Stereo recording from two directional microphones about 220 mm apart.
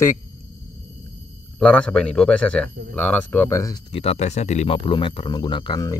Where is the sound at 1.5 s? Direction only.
5° left (ahead or behind).